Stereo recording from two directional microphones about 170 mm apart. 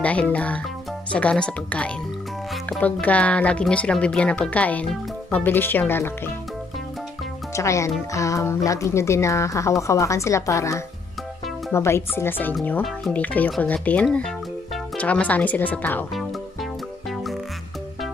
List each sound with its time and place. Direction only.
0.0 s speech: 10° left (ahead or behind)
7.5 s speech: 15° left (ahead or behind)